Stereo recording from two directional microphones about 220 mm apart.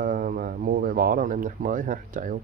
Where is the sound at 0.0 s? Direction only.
40° right (ahead or behind).